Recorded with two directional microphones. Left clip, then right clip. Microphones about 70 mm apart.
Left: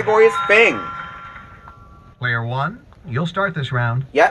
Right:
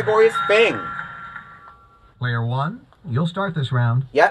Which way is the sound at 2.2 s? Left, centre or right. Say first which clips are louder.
Left 4 dB; right.